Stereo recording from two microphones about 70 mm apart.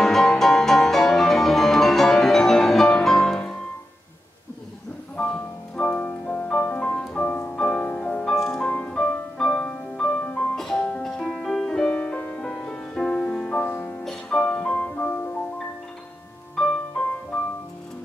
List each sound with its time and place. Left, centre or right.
0.0 s music: centre
5.1 s music: centre
11.9 s music: centre
13.6 s music: left
14.0 s music: centre
16.5 s music: centre